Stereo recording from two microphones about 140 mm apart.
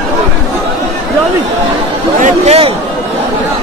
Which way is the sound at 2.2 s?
50° right (ahead or behind).